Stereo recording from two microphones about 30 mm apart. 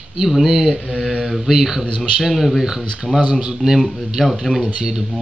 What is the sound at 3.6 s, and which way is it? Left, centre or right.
Speech, centre.